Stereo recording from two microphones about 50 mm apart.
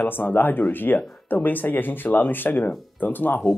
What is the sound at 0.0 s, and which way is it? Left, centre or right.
Speech, left.